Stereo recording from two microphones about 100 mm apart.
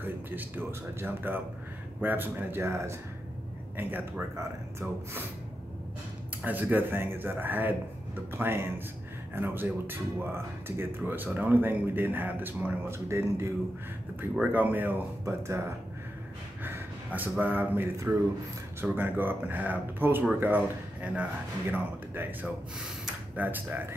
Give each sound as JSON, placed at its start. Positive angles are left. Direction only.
{"t": 0.0, "sound": "speech", "side_deg": -20}
{"t": 6.4, "sound": "speech", "side_deg": -15}
{"t": 14.5, "sound": "speech", "side_deg": -15}
{"t": 15.2, "sound": "speech", "side_deg": -30}
{"t": 16.6, "sound": "speech", "side_deg": -20}